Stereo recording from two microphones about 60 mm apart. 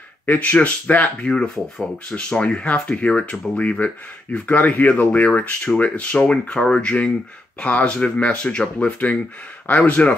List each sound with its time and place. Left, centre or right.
0.3 s speech: left
1.3 s speech: centre